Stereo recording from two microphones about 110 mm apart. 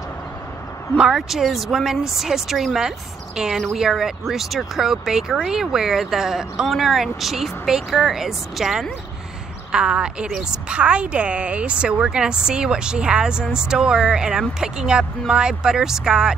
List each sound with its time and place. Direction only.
0.9 s a woman's voice: 5° right (ahead or behind)